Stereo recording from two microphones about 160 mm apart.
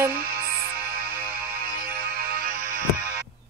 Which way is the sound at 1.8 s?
65° right (ahead or behind).